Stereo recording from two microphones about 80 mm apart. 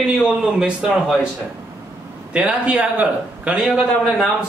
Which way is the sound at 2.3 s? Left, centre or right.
Centre.